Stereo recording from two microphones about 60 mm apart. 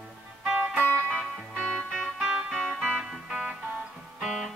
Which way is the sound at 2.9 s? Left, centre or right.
Centre.